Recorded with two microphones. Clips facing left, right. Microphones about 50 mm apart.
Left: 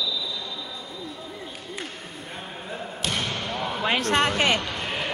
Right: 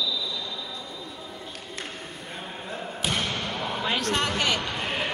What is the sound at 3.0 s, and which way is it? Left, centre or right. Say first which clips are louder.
Basketball bounce: even; centre.